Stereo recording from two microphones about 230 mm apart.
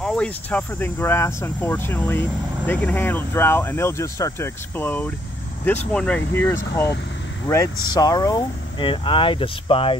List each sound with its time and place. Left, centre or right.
0.0 s speech: centre; by 9.9 s left